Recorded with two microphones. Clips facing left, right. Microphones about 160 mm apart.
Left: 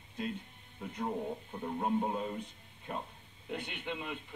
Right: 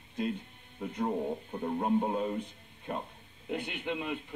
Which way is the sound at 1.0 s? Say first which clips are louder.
Right 4 dB; 25° right (ahead or behind).